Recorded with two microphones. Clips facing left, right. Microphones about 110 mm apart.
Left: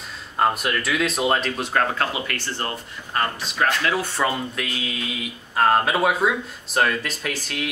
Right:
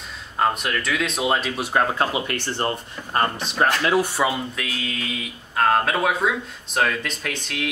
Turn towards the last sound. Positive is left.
turn(degrees=0)  # may be behind; listen again after turning